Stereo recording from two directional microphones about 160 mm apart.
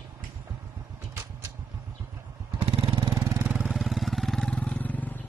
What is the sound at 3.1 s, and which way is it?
Vehicle, 20° right (ahead or behind).